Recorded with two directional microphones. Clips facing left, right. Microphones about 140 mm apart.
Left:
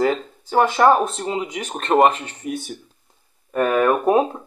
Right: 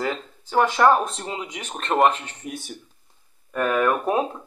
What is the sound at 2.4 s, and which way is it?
Speech, 50° left (ahead or behind).